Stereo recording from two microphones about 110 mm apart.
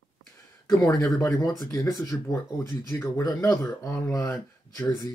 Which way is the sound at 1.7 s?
30° left (ahead or behind).